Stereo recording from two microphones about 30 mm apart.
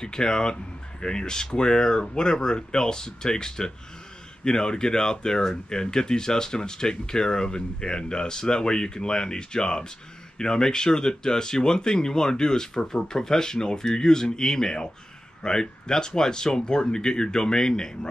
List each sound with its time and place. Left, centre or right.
0.0 s speech: left